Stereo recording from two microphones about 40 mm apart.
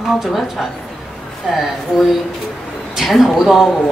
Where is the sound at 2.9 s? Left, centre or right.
Centre.